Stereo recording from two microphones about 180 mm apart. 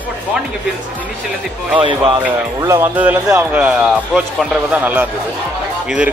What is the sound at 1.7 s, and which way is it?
Speech, 25° right (ahead or behind).